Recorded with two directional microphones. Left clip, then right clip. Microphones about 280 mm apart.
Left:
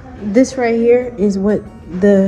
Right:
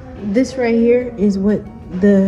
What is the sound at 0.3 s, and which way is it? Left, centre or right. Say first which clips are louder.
Speech: left 3 dB; centre.